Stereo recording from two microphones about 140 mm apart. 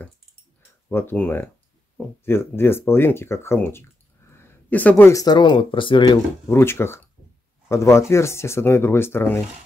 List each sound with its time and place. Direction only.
0.8 s speech: 15° left (ahead or behind)
4.3 s a sound: 15° left (ahead or behind)
5.2 s speech: 30° left (ahead or behind)
6.5 s speech: 15° left (ahead or behind)